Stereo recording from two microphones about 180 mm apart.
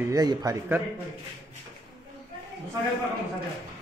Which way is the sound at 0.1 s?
20° right (ahead or behind).